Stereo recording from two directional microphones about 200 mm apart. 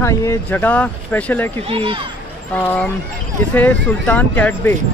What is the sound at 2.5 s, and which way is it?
Speech, 10° left (ahead or behind).